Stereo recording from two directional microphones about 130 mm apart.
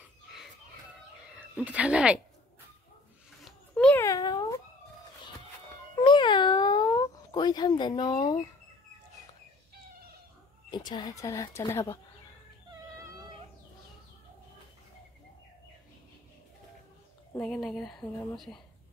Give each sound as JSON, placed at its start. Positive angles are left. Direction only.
{"t": 1.3, "sound": "speech", "side_deg": -10}
{"t": 3.4, "sound": "a sound", "side_deg": 5}
{"t": 4.0, "sound": "cat", "side_deg": 30}
{"t": 5.9, "sound": "cat", "side_deg": 40}
{"t": 10.7, "sound": "speech", "side_deg": 35}
{"t": 17.4, "sound": "a woman's voice", "side_deg": 5}